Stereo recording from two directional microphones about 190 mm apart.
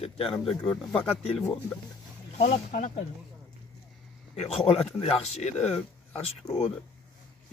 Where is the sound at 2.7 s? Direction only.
50° left (ahead or behind).